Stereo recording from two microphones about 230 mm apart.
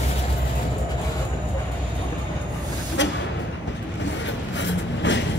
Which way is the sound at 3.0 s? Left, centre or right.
Left.